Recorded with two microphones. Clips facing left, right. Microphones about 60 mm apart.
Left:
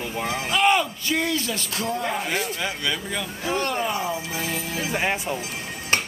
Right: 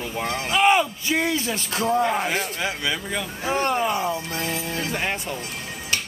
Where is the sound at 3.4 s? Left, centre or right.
Right.